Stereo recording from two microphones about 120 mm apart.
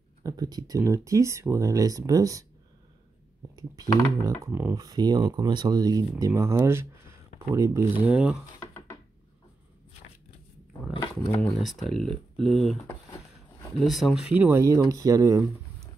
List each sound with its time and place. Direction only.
0.2 s speech: 30° right (ahead or behind)
3.5 s speech: 30° right (ahead or behind)
4.7 s speech: 35° right (ahead or behind); by 8.4 s 10° right (ahead or behind)
8.5 s a sound: 20° left (ahead or behind)
11.4 s speech: 5° left (ahead or behind)
12.8 s a sound: 25° left (ahead or behind)
13.7 s speech: centre (ahead or behind)
14.3 s speech: 15° right (ahead or behind)
14.6 s speech: 25° right (ahead or behind)